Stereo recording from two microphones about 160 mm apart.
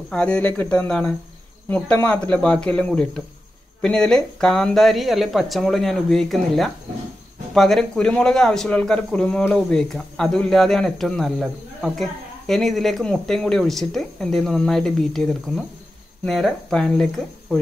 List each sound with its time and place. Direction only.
0.1 s a man's voice: 5° left (ahead or behind)